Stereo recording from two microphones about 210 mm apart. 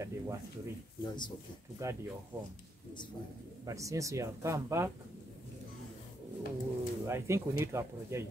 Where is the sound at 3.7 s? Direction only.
15° right (ahead or behind).